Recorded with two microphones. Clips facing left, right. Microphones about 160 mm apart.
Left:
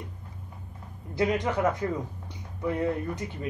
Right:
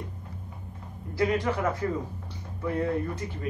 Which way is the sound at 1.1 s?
20° left (ahead or behind).